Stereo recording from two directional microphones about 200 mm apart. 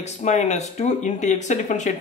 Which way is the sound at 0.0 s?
35° left (ahead or behind).